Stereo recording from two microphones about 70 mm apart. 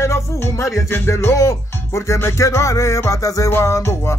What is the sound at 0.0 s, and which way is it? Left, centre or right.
Music, left.